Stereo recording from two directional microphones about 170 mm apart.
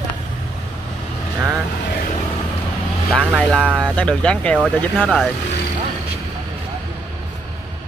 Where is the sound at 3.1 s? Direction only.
Centre (ahead or behind).